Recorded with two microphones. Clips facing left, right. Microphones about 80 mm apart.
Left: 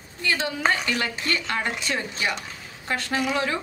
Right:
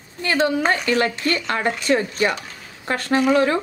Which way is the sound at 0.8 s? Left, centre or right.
Right.